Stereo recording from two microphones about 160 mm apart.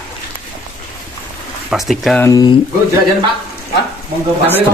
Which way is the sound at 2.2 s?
20° left (ahead or behind).